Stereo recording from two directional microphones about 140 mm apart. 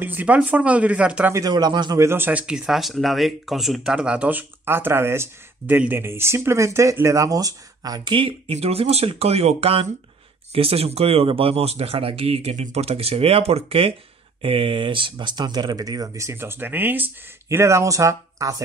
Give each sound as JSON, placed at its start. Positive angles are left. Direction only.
{"t": 0.0, "sound": "speech", "side_deg": -10}
{"t": 1.3, "sound": "speech", "side_deg": -25}
{"t": 2.0, "sound": "speech", "side_deg": -15}